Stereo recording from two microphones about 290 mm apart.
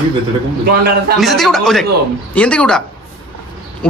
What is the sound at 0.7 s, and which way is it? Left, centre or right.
Speech, right.